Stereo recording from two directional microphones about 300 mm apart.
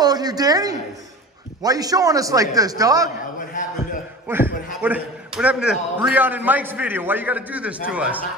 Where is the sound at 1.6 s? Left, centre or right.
Centre.